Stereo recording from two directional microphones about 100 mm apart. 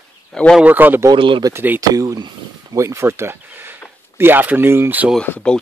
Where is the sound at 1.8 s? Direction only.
35° right (ahead or behind).